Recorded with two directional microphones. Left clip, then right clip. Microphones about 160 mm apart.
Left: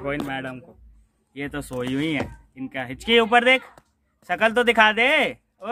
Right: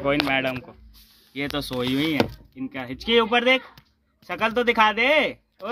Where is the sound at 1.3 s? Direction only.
15° right (ahead or behind).